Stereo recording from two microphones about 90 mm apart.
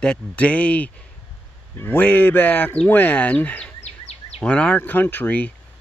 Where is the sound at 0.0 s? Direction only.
15° left (ahead or behind).